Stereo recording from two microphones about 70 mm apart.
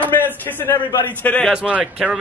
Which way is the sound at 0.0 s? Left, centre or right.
Left.